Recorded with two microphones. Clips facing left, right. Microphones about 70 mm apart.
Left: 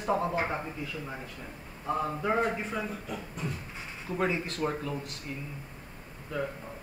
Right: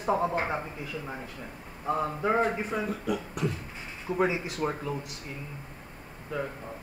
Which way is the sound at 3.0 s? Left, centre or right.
Right.